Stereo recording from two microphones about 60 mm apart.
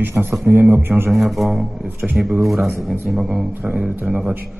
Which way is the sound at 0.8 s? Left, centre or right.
Right.